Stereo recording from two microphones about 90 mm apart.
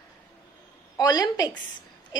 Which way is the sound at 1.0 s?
45° left (ahead or behind).